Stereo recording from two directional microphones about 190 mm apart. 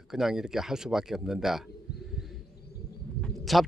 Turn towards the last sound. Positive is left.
turn(degrees=0)  # may be behind; listen again after turning